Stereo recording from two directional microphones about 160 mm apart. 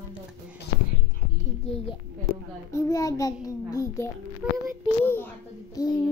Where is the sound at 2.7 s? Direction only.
20° left (ahead or behind).